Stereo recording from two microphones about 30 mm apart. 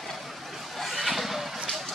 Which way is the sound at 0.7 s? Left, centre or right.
Centre.